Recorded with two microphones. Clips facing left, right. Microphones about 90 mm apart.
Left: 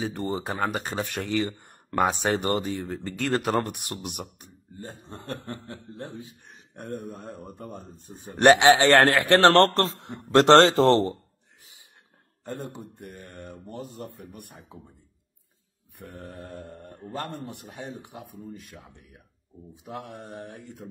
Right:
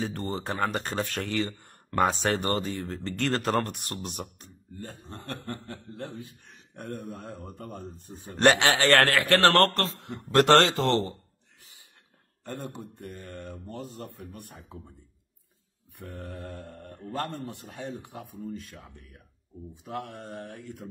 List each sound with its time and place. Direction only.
0.0 s speech: 15° left (ahead or behind); by 11.1 s 35° left (ahead or behind)
12.4 s speech: 15° left (ahead or behind)
16.0 s speech: 20° left (ahead or behind)